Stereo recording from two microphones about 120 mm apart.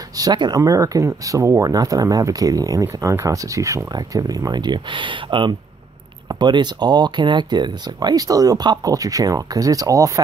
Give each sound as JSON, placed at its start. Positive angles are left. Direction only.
{"t": 0.2, "sound": "speech", "side_deg": -35}